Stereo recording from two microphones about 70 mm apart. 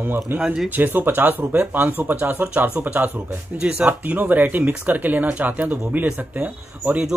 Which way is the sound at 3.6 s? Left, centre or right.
Centre.